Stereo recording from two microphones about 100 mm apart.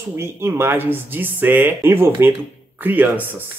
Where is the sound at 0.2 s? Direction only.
25° right (ahead or behind).